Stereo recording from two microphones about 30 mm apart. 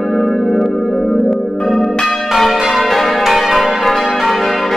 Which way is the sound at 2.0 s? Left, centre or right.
Centre.